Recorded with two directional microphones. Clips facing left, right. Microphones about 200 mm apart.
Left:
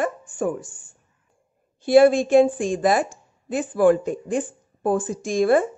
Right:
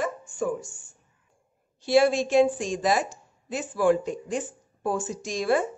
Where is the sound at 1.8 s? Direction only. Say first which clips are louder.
Left 6 dB; 55° left (ahead or behind).